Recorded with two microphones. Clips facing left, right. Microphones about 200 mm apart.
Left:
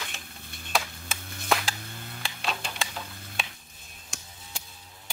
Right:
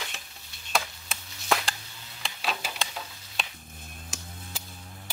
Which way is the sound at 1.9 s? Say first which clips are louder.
Left 8 dB; 55° left (ahead or behind).